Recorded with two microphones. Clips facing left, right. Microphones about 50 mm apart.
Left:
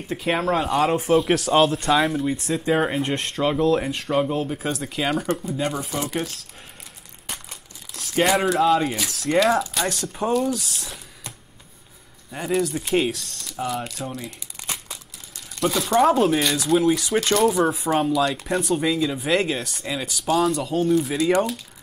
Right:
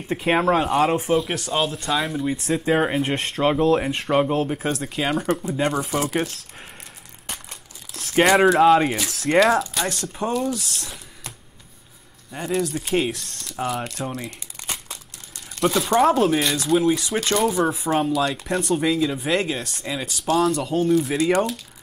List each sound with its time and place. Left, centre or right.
0.3 s speech: right
0.8 s speech: centre
3.4 s speech: centre
4.7 s speech: centre
5.5 s speech: right
7.2 s crumpling: centre
8.2 s speech: centre
12.3 s speech: centre
13.6 s speech: right
14.2 s speech: centre